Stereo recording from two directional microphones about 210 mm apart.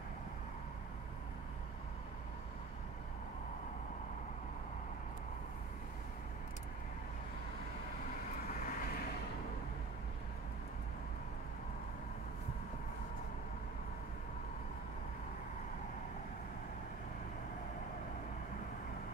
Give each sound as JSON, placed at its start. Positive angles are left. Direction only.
{"t": 8.5, "sound": "vehicle", "side_deg": 40}